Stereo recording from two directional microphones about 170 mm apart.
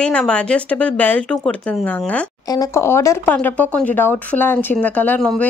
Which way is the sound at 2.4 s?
20° left (ahead or behind).